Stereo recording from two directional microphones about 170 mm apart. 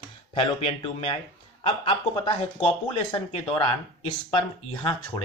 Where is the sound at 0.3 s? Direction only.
30° left (ahead or behind).